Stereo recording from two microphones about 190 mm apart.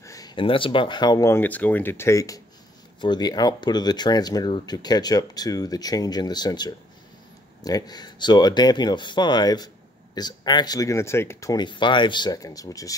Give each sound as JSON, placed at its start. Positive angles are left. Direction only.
{"t": 0.0, "sound": "speech", "side_deg": 20}